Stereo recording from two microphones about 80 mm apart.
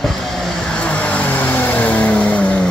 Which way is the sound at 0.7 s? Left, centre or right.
Centre.